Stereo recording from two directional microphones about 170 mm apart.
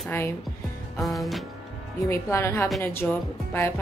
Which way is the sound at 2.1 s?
15° left (ahead or behind).